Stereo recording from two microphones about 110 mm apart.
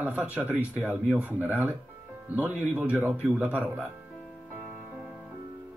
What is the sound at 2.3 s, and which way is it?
Speech, 15° right (ahead or behind).